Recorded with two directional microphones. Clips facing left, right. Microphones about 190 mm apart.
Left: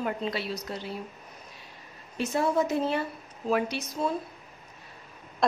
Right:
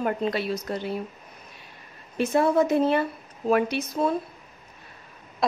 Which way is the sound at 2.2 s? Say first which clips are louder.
Right 5 dB; 55° right (ahead or behind).